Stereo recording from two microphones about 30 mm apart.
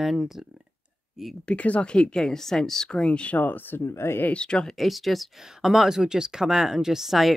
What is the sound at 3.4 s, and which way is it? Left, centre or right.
Speech, left.